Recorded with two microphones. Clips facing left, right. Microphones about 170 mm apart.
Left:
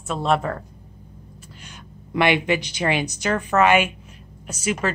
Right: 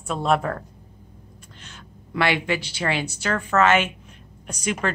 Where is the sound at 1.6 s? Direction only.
15° left (ahead or behind).